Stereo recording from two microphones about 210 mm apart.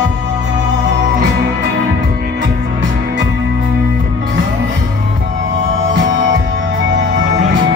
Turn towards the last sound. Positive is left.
turn(degrees=-65)  # may be behind; listen again after turning